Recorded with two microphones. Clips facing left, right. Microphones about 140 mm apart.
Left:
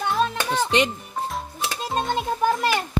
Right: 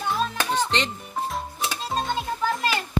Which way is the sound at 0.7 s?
10° left (ahead or behind).